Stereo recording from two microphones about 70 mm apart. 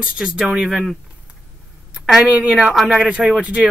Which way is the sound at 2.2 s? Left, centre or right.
Centre.